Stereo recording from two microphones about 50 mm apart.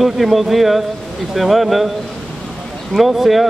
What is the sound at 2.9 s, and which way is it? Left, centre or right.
Speech, centre.